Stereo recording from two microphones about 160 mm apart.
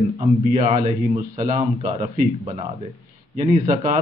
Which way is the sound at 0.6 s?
55° right (ahead or behind).